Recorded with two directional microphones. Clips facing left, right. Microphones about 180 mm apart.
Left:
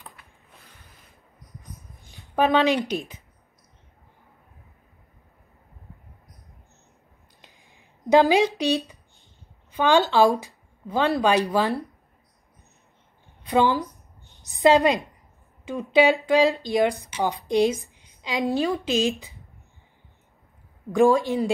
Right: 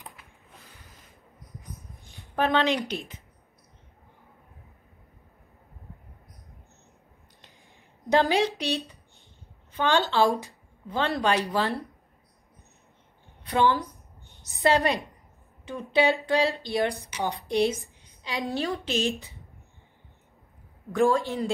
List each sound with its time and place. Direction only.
2.3 s a woman's voice: 15° left (ahead or behind)
8.1 s a woman's voice: 15° left (ahead or behind)
13.5 s a woman's voice: 15° left (ahead or behind)
17.5 s a sound: 15° left (ahead or behind)
18.5 s a woman's voice: 15° left (ahead or behind)
20.9 s a woman's voice: 15° left (ahead or behind)